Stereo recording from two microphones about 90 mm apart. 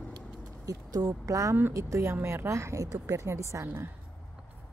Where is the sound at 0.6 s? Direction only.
40° right (ahead or behind).